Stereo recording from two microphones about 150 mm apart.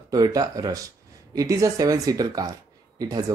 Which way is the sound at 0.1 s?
25° right (ahead or behind).